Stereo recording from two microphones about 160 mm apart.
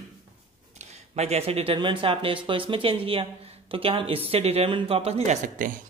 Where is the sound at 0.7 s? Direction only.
45° right (ahead or behind).